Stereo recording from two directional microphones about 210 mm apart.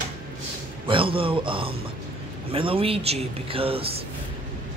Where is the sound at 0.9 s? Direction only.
25° right (ahead or behind).